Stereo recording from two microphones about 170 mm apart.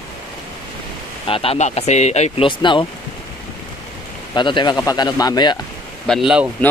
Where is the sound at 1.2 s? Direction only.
35° left (ahead or behind).